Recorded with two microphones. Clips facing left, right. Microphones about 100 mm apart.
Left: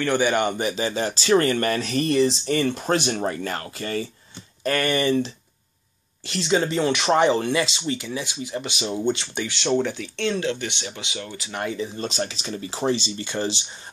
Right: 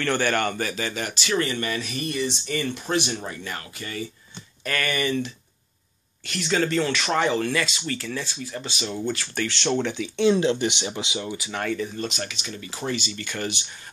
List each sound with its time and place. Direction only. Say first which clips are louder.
0.0 s speech: left 3 dB; 15° left (ahead or behind); by 1.8 s 45° left (ahead or behind)
1.8 s speech: left 8 dB; 35° left (ahead or behind)
4.6 s speech: left 5 dB; 30° left (ahead or behind)
9.4 s speech: even; 10° left (ahead or behind)
10.2 s speech: right 5 dB; 20° right (ahead or behind)
11.7 s speech: even; 30° left (ahead or behind)